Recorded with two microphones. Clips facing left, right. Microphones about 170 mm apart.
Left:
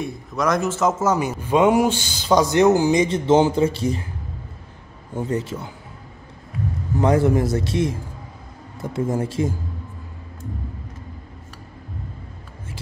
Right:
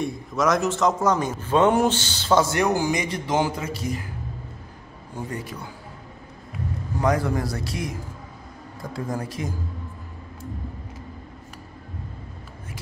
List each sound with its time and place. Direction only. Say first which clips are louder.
0.0 s a man's voice: even; centre (ahead or behind); by 4.1 s 30° left (ahead or behind)
5.1 s a man's voice: left 8 dB; 25° left (ahead or behind)
7.0 s a man's voice: left 5 dB; 25° left (ahead or behind)